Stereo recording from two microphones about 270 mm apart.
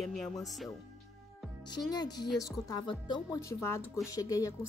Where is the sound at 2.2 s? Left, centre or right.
Centre.